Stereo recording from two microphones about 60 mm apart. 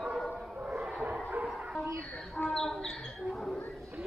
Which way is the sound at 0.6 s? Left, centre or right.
Centre.